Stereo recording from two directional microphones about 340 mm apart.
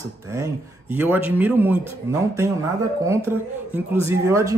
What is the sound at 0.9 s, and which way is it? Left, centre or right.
Speech, centre.